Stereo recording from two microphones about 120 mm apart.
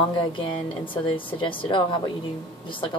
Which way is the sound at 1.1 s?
45° left (ahead or behind).